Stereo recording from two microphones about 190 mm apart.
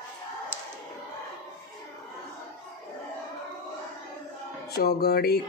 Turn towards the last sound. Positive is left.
turn(degrees=55)  # may be behind; listen again after turning